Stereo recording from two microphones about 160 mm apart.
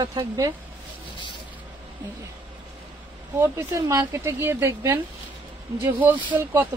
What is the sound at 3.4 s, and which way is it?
A woman's voice, 15° right (ahead or behind).